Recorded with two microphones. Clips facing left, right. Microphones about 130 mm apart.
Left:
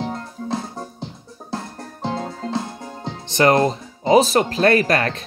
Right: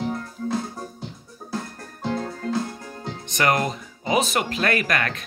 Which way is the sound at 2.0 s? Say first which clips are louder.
Left 1 dB; 25° left (ahead or behind).